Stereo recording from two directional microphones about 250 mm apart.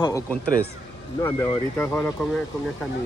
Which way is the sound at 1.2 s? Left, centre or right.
Centre.